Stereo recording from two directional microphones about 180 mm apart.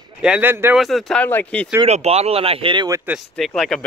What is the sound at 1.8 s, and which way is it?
Speech, 35° right (ahead or behind).